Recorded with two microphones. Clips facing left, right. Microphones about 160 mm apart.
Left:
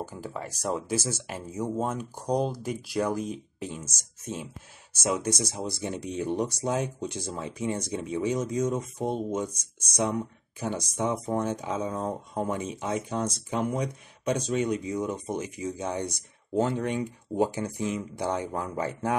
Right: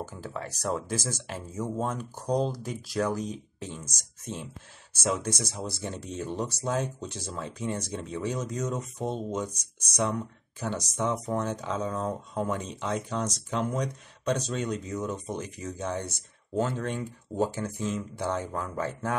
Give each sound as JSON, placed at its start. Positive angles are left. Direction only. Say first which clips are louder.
{"t": 0.0, "sound": "speech", "louder": "left 1 dB", "side_deg": 10}